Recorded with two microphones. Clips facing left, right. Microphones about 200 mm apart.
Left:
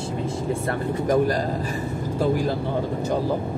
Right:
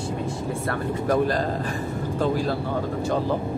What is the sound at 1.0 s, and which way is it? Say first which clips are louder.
Speech: left 2 dB; 15° left (ahead or behind).